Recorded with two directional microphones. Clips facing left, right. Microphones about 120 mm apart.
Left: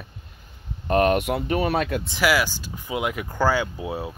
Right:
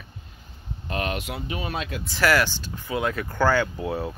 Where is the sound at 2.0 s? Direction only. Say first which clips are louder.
Even; 10° left (ahead or behind).